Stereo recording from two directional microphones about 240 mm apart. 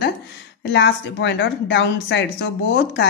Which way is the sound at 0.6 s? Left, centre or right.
Left.